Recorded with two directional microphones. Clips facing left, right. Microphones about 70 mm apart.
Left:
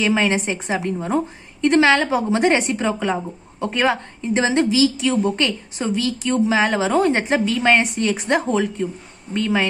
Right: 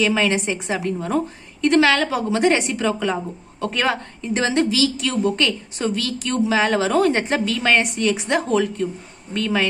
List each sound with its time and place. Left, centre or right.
0.0 s a woman's voice: left